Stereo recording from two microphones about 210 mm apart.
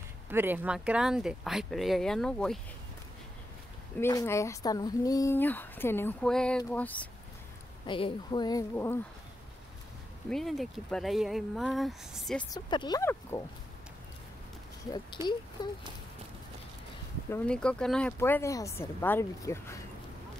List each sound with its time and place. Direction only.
0.3 s speech: 10° right (ahead or behind)
4.0 s speech: 15° left (ahead or behind)
7.8 s speech: 20° left (ahead or behind)
10.3 s speech: centre (ahead or behind)
12.4 s speech: 20° left (ahead or behind)
15.6 s speech: 20° left (ahead or behind)
17.3 s speech: 5° left (ahead or behind)